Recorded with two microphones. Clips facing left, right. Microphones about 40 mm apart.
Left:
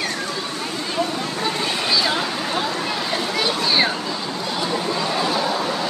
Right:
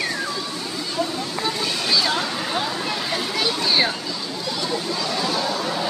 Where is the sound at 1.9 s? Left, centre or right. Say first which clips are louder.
Even; centre.